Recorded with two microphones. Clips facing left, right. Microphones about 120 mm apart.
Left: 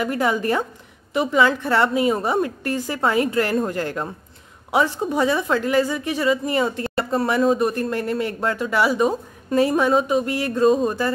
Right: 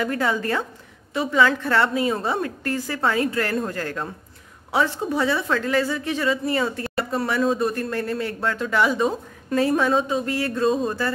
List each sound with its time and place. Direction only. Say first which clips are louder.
0.0 s speech: left 2 dB; 15° left (ahead or behind)
6.8 s a sound: left 3 dB; 25° left (ahead or behind)
7.4 s speech: left 3 dB; 15° left (ahead or behind)